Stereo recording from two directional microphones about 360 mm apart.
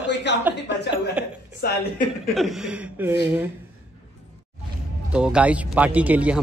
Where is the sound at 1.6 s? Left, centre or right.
Left.